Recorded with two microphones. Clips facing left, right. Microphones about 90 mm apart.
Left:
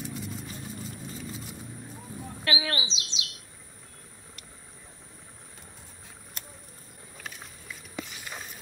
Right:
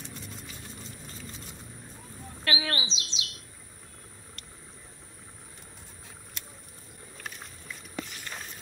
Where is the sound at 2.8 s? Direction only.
40° right (ahead or behind).